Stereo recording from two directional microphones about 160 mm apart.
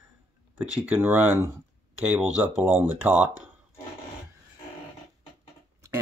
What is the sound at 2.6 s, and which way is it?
Speech, 10° right (ahead or behind).